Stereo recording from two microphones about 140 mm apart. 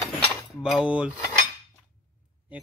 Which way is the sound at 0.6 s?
5° right (ahead or behind).